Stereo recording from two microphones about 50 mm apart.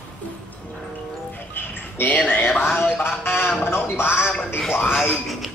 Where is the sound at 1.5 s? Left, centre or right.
Left.